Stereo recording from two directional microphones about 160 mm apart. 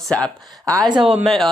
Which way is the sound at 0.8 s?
30° right (ahead or behind).